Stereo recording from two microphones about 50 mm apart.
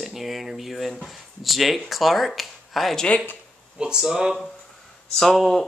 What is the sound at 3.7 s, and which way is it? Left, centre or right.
Speech, centre.